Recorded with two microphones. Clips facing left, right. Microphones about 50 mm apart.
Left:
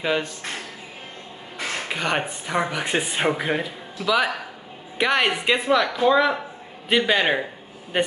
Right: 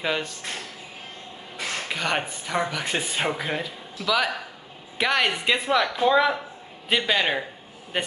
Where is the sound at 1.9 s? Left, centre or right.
Centre.